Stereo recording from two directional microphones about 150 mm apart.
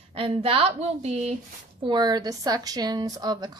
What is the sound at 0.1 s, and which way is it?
A woman's voice, 40° right (ahead or behind).